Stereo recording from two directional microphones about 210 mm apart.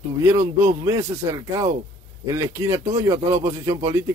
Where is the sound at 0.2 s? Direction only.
15° right (ahead or behind).